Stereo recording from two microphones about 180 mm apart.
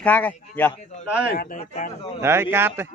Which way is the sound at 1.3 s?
55° left (ahead or behind).